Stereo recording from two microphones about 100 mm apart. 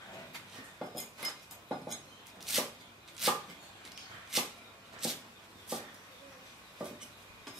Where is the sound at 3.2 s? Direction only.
5° right (ahead or behind).